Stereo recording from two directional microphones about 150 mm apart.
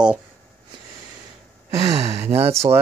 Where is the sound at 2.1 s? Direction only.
15° right (ahead or behind).